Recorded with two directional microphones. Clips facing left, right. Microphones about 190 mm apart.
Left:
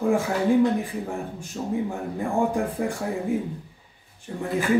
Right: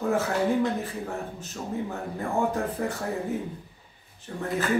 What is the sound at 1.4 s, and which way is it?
A man's voice, 15° left (ahead or behind).